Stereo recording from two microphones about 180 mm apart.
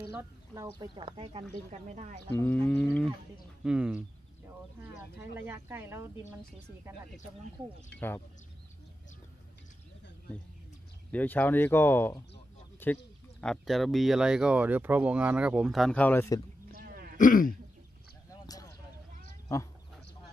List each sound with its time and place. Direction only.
0.0 s speech: 15° right (ahead or behind)
0.9 s a woman's voice: 30° right (ahead or behind)
2.2 s speech: 10° left (ahead or behind)
3.6 s speech: 5° right (ahead or behind)
5.5 s speech: 10° right (ahead or behind)
11.1 s speech: 10° left (ahead or behind)
16.7 s throat clearing: 55° right (ahead or behind)
17.2 s speech: 50° left (ahead or behind)
18.3 s a sound: 20° left (ahead or behind)